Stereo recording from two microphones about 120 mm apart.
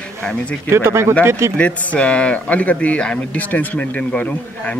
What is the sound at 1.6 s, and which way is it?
Speech, 10° left (ahead or behind).